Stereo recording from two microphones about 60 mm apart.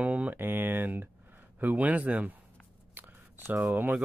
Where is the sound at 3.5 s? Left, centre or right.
Right.